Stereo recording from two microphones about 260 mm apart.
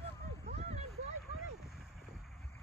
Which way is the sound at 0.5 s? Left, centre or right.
Right.